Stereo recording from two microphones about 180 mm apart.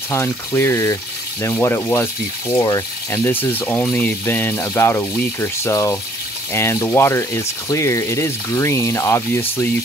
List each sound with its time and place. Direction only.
0.1 s speech: 10° left (ahead or behind)